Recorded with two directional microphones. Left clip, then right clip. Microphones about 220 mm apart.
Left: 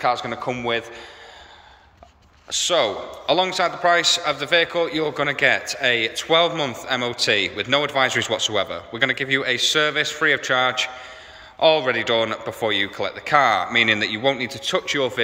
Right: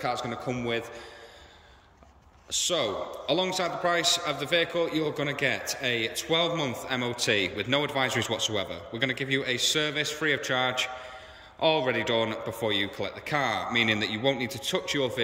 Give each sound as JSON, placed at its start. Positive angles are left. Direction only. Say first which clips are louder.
{"t": 0.0, "sound": "a man's voice", "louder": "left 9 dB", "side_deg": -5}
{"t": 2.5, "sound": "a man's voice", "louder": "left 8 dB", "side_deg": -5}